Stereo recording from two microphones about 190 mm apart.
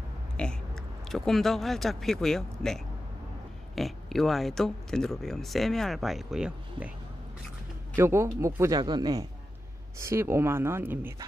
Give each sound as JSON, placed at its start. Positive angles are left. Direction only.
{"t": 0.4, "sound": "speech", "side_deg": 5}
{"t": 7.9, "sound": "a woman's voice", "side_deg": -15}